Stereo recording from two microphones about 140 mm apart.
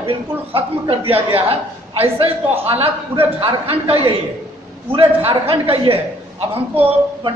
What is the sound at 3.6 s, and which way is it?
Speech, 40° right (ahead or behind).